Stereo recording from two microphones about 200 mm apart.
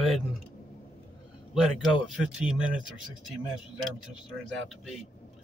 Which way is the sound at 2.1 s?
5° right (ahead or behind).